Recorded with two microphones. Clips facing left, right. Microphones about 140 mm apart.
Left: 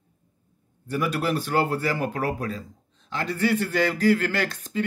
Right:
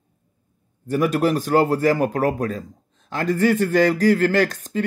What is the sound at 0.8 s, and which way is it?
Speech, 45° right (ahead or behind).